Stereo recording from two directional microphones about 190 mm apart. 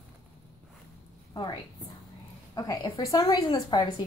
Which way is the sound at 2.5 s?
20° left (ahead or behind).